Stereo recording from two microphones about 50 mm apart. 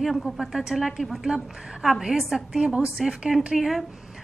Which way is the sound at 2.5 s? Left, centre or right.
Centre.